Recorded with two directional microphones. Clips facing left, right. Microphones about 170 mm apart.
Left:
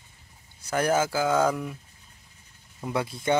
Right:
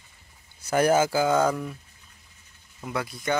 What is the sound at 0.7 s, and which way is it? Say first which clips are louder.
Speech: right 3 dB; 5° right (ahead or behind).